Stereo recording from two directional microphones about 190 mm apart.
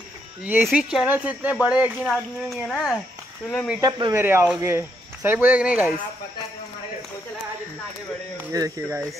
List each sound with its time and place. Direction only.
0.5 s speech: 5° right (ahead or behind)
3.8 s speech: 15° right (ahead or behind)
8.5 s speech: 15° right (ahead or behind)